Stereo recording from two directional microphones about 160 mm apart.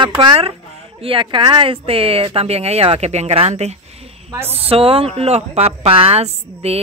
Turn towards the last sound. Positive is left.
turn(degrees=-40)  # may be behind; listen again after turning